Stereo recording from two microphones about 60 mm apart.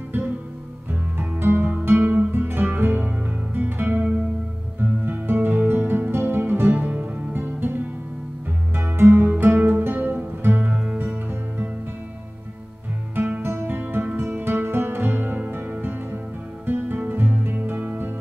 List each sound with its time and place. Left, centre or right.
1.4 s music: right
6.7 s music: right
8.9 s music: right
13.4 s music: right